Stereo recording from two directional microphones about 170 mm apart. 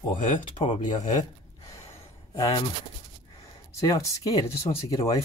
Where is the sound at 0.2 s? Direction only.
50° left (ahead or behind).